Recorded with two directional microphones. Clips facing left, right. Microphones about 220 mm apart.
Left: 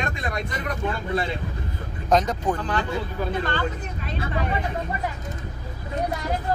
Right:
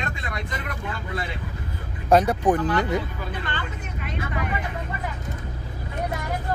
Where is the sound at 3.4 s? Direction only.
35° left (ahead or behind).